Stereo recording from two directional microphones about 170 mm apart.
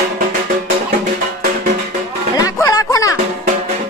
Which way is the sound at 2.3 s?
20° left (ahead or behind).